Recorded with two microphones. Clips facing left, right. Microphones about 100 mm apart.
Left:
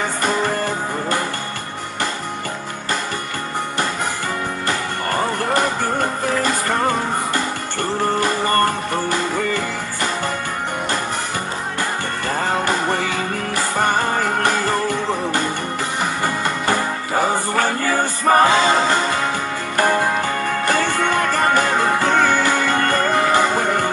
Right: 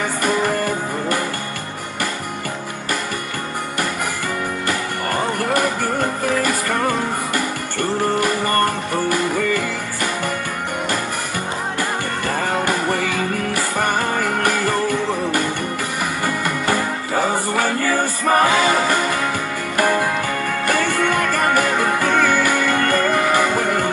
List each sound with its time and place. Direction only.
0.2 s music: 25° left (ahead or behind)
4.6 s music: 25° left (ahead or behind)
12.6 s music: 30° left (ahead or behind)
16.3 s music: 30° left (ahead or behind)
17.6 s music: 40° left (ahead or behind)